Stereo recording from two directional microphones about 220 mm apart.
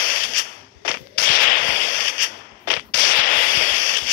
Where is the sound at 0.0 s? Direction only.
40° left (ahead or behind).